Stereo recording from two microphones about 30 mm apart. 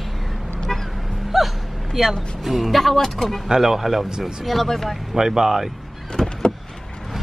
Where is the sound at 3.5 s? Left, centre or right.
Centre.